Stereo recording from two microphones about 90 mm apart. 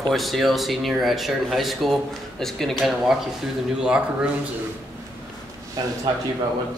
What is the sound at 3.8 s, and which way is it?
Speech, 10° right (ahead or behind).